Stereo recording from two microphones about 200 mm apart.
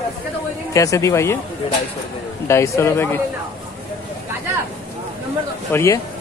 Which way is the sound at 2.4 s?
15° left (ahead or behind).